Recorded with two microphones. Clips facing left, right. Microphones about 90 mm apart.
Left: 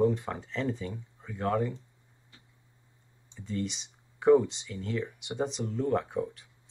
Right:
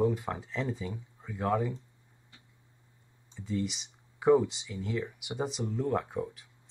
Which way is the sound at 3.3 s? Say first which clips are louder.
Right 1 dB; 5° right (ahead or behind).